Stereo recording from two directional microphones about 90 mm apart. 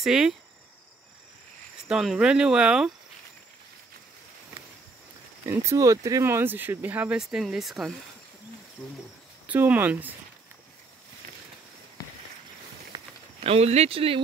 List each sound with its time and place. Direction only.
0.0 s speech: 5° right (ahead or behind)
1.9 s speech: 5° right (ahead or behind)
5.5 s speech: 30° right (ahead or behind)
7.2 s speech: 5° right (ahead or behind)
9.5 s speech: 20° right (ahead or behind)
12.9 s walk: 50° right (ahead or behind)
13.5 s speech: 90° right